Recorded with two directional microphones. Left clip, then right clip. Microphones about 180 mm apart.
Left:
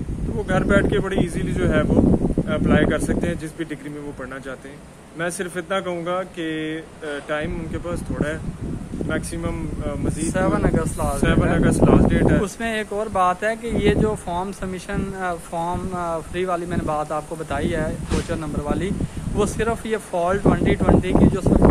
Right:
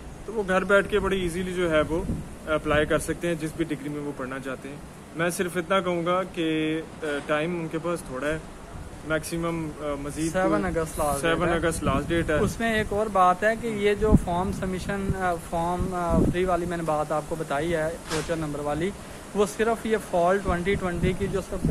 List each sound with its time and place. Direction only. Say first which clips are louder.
0.5 s speech: left 2 dB; 10° right (ahead or behind)
5.2 s speech: left 1 dB; 10° right (ahead or behind)
10.2 s speech: left 3 dB; 20° left (ahead or behind)
11.2 s speech: left 5 dB; 10° right (ahead or behind)
12.5 s speech: left 1 dB; 15° left (ahead or behind)